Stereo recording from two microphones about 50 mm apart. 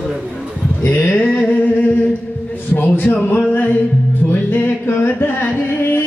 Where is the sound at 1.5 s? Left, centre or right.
Left.